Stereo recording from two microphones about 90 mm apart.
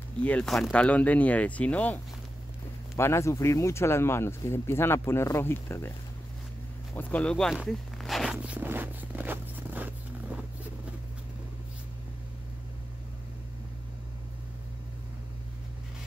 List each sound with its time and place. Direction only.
0.2 s speech: 15° left (ahead or behind)
3.0 s speech: 30° left (ahead or behind)
7.0 s speech: 15° left (ahead or behind)
7.6 s zipper: centre (ahead or behind)
8.5 s zipper: 20° right (ahead or behind)